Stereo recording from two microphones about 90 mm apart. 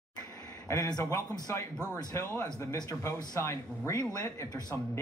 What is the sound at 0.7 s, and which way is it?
Speech, 45° left (ahead or behind).